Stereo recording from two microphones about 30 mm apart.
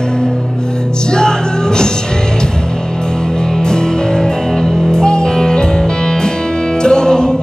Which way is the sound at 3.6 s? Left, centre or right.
Left.